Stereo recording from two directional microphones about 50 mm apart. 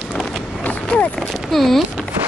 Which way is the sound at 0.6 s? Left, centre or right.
Left.